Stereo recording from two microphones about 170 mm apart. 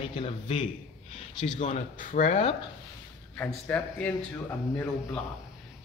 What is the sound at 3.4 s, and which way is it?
A man's voice, 5° left (ahead or behind).